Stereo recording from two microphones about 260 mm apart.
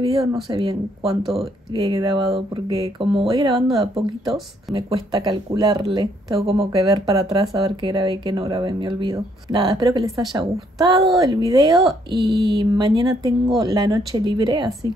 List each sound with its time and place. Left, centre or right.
0.0 s speech: centre
1.2 s speech: centre
1.7 s speech: centre
12.2 s a sound: right
12.4 s speech: centre